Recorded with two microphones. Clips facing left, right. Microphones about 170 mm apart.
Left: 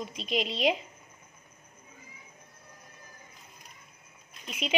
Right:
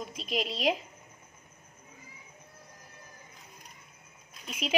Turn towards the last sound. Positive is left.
turn(degrees=0)  # may be behind; listen again after turning